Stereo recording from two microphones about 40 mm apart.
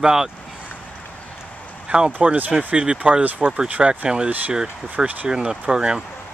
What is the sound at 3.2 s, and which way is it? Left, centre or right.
Speech, right.